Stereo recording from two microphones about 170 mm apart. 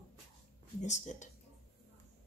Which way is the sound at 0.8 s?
45° left (ahead or behind).